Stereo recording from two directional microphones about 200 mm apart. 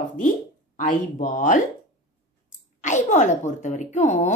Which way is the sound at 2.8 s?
35° left (ahead or behind).